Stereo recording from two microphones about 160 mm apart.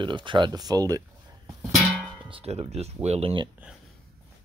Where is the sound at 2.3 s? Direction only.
40° right (ahead or behind).